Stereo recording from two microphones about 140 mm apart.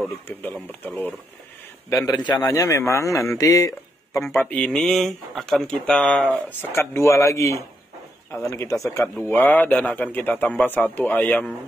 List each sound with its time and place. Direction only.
1.9 s a man's voice: 25° left (ahead or behind)
4.3 s a man's voice: 10° left (ahead or behind)